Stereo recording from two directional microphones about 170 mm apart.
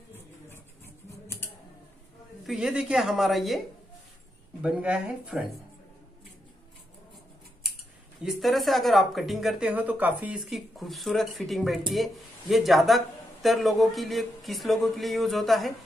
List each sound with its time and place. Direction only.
0.5 s a sound: 15° left (ahead or behind)
2.4 s speech: centre (ahead or behind)
8.2 s speech: centre (ahead or behind)